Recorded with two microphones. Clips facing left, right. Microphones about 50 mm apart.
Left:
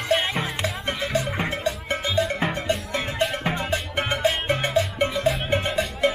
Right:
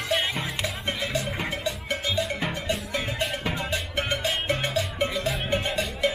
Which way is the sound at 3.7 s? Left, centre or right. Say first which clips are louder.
Left 3 dB; centre.